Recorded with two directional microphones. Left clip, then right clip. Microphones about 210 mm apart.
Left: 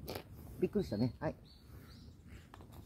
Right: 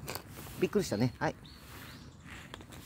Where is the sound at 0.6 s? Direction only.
45° right (ahead or behind).